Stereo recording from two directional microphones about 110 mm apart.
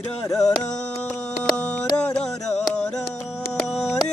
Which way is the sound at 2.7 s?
10° left (ahead or behind).